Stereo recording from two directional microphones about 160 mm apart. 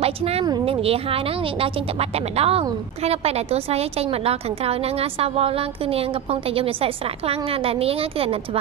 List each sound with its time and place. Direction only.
0.0 s speech: 40° right (ahead or behind)